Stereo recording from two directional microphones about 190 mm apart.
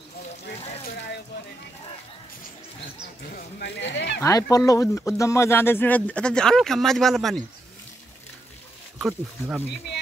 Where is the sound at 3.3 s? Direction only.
60° left (ahead or behind).